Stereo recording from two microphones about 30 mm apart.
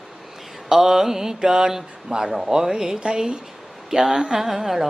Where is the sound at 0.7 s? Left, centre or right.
Centre.